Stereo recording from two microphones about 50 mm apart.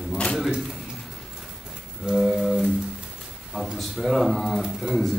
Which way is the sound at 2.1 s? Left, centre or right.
Centre.